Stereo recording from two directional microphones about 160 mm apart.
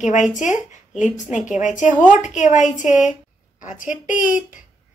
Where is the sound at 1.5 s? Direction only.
50° left (ahead or behind).